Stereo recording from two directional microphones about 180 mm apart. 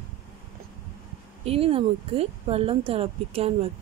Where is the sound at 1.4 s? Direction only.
35° right (ahead or behind).